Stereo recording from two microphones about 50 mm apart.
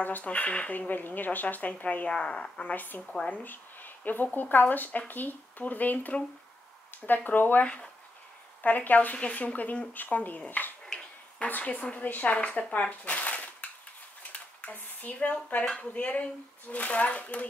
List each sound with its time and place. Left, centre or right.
0.0 s speech: left
0.7 s speech: left
2.1 s speech: centre
2.6 s speech: left
7.6 s speech: centre
8.6 s speech: left
11.4 s speech: left
12.4 s speech: left
13.0 s a sound: left
14.3 s typewriter: left
15.6 s speech: centre